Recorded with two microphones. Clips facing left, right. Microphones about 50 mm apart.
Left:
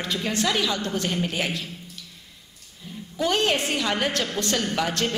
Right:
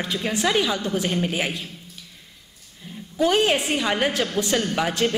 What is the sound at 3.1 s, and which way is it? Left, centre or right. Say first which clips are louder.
A woman's voice: right 3 dB; centre.